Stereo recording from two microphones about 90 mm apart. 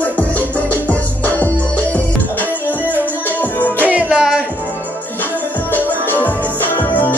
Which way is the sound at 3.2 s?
20° left (ahead or behind).